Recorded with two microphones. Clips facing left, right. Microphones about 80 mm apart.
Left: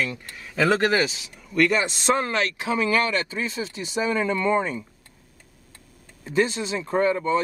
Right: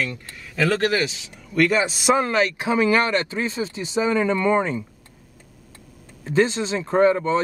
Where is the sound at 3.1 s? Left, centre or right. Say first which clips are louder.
Right 3 dB; right.